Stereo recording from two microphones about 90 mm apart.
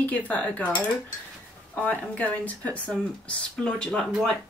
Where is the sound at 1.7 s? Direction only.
15° left (ahead or behind).